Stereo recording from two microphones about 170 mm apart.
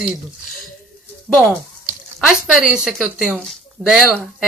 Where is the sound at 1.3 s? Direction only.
Centre (ahead or behind).